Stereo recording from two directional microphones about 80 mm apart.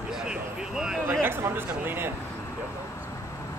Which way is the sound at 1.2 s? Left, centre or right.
Right.